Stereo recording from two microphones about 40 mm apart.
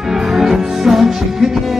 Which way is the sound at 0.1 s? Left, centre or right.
Centre.